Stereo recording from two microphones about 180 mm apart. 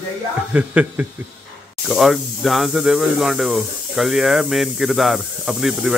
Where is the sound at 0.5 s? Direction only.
10° right (ahead or behind).